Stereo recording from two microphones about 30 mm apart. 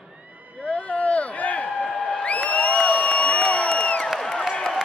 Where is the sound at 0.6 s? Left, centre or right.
Left.